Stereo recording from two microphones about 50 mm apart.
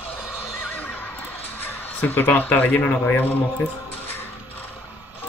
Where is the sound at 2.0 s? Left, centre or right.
Left.